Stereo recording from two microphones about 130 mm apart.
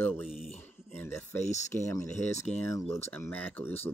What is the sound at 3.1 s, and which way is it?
Speech, 15° left (ahead or behind).